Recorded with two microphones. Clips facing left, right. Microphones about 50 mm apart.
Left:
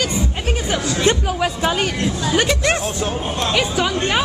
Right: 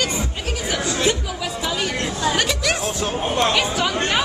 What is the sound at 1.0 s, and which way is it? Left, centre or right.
Chatter, left.